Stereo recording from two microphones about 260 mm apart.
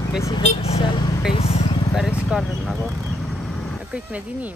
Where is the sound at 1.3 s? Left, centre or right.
Left.